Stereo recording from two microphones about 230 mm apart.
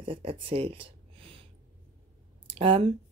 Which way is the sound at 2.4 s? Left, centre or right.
Right.